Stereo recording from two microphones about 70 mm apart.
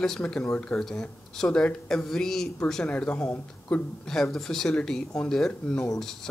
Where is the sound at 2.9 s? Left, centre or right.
Centre.